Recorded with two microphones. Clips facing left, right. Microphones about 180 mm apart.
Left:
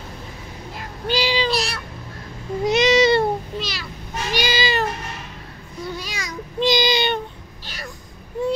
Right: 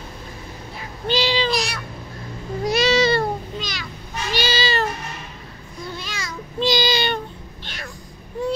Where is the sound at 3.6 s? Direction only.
5° left (ahead or behind).